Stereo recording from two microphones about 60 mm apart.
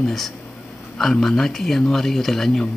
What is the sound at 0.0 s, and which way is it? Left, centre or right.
Speech, centre.